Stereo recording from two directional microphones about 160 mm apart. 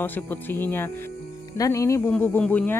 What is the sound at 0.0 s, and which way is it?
Speech, 10° left (ahead or behind).